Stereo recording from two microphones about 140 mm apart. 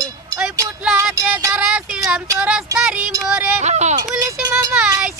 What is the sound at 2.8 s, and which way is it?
Speech, 5° right (ahead or behind).